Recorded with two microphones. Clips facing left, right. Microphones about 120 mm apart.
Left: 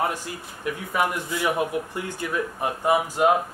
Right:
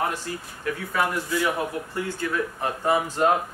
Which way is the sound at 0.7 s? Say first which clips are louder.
Left 1 dB; 15° left (ahead or behind).